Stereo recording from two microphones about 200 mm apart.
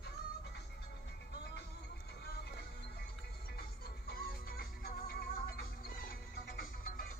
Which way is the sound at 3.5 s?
50° left (ahead or behind).